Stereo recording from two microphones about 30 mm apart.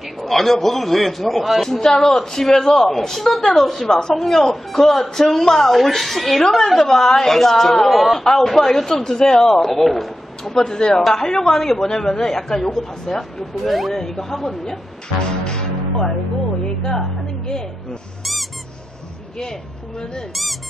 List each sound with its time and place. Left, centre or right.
0.2 s a man's voice: centre
1.8 s a woman's voice: centre
5.7 s a man's voice: centre
9.6 s a man's voice: centre
10.4 s a woman's voice: centre
13.7 s a man's voice: centre
14.0 s a woman's voice: centre
15.4 s music: left
16.6 s a woman's voice: left
18.2 s squeak: centre